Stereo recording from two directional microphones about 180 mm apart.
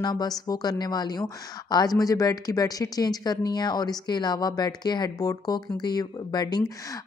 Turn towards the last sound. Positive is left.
turn(degrees=20)  # may be behind; listen again after turning